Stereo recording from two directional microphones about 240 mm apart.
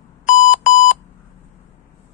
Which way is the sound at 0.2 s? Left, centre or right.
Left.